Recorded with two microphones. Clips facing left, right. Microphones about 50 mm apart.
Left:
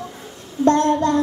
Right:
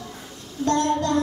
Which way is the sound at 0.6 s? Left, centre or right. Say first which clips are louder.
Left 6 dB; left.